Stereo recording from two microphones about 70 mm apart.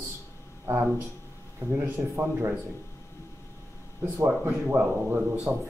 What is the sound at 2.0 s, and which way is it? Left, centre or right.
Speech, centre.